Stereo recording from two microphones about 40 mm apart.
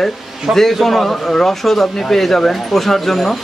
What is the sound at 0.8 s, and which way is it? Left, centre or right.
Speech, centre.